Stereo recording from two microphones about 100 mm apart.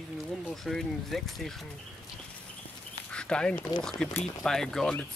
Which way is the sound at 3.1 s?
10° left (ahead or behind).